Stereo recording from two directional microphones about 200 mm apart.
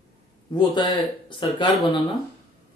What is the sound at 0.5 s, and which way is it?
Speech, 25° left (ahead or behind).